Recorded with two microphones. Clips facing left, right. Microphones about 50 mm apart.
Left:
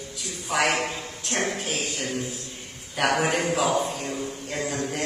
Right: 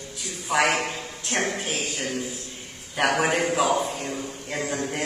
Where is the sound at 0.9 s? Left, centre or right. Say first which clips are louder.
Even; centre.